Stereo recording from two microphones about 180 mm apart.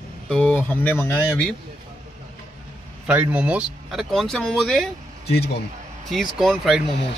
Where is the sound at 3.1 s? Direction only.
10° right (ahead or behind).